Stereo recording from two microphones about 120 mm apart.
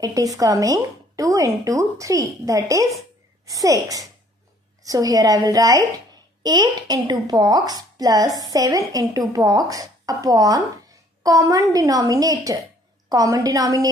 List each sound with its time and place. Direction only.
0.0 s speech: 30° right (ahead or behind)